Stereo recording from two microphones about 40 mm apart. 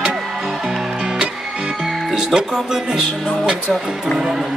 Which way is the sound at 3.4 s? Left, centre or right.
Centre.